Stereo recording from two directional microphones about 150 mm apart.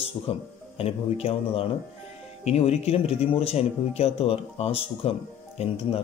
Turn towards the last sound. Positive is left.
turn(degrees=40)  # may be behind; listen again after turning